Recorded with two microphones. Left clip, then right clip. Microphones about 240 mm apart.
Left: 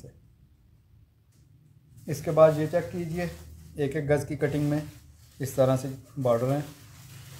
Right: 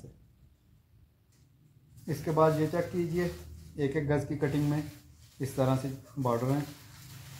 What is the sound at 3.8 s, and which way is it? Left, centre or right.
Speech, left.